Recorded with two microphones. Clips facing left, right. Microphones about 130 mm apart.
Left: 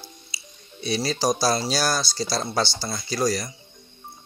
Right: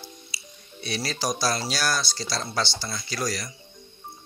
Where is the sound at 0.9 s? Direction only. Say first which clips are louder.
Left 5 dB; 30° left (ahead or behind).